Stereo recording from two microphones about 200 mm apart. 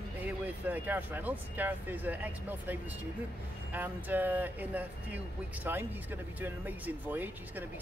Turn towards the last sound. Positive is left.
turn(degrees=-10)  # may be behind; listen again after turning